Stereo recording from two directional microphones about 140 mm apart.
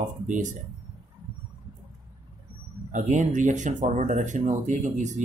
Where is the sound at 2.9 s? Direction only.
60° right (ahead or behind).